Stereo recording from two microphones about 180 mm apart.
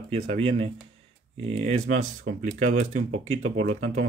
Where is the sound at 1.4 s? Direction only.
35° right (ahead or behind).